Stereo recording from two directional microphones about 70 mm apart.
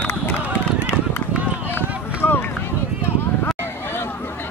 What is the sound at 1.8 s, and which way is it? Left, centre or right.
Run, left.